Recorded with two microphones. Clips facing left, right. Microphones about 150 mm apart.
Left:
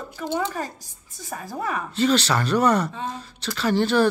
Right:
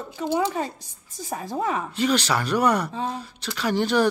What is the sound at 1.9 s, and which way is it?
Speech, 10° right (ahead or behind).